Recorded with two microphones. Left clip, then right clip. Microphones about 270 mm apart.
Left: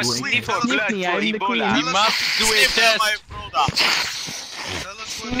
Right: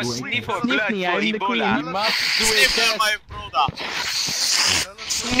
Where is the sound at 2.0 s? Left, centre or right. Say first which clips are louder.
Left 1 dB; centre.